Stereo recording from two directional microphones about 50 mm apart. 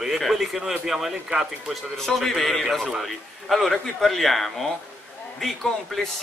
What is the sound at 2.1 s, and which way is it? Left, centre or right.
A man's voice, centre.